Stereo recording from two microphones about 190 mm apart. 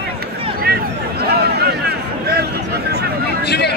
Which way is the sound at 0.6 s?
55° right (ahead or behind).